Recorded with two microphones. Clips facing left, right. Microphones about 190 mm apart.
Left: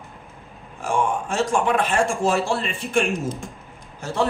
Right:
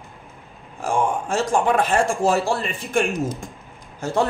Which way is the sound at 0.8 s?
40° right (ahead or behind).